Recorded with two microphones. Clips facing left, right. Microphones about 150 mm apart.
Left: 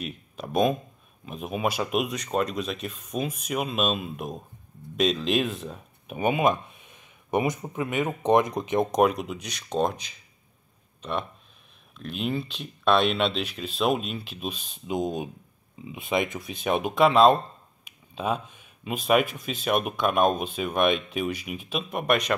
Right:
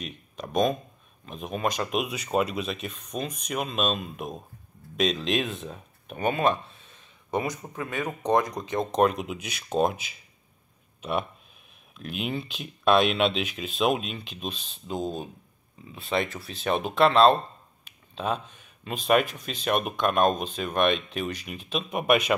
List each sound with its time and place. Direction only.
0.0 s a sound: 5° left (ahead or behind)
1.2 s speech: 5° left (ahead or behind)
9.0 s speech: centre (ahead or behind)